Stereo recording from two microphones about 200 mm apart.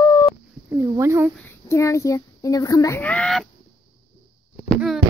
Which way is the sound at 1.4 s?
15° left (ahead or behind).